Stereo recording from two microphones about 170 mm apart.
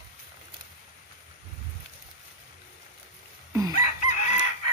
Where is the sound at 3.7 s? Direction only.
45° left (ahead or behind).